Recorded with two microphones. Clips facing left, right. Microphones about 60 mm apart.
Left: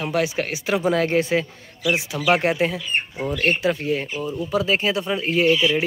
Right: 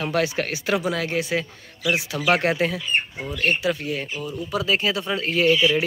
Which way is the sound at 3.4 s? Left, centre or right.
Left.